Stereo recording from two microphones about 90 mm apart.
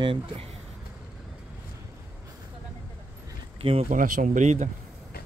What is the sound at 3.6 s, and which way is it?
Speech, 85° right.